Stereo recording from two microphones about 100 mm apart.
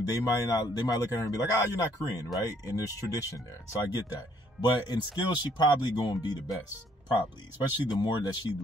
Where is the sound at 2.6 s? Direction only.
35° left (ahead or behind).